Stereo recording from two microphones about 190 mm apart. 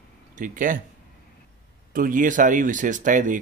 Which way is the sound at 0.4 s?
45° right (ahead or behind).